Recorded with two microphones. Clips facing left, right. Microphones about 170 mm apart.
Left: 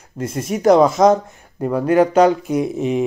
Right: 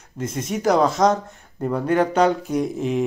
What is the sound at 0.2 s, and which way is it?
Speech, 5° left (ahead or behind).